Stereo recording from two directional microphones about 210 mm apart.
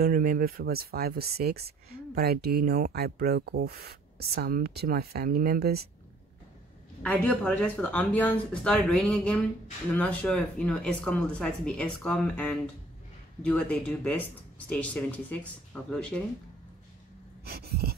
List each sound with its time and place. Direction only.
0.0 s speech: 45° right (ahead or behind)
7.0 s speech: 5° left (ahead or behind)
17.5 s speech: 50° right (ahead or behind)